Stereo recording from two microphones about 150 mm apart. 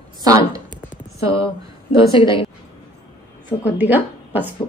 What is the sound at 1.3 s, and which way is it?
A woman's voice, 35° left (ahead or behind).